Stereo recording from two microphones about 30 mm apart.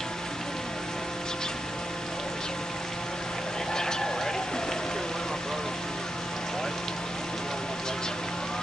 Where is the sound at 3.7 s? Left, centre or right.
Left.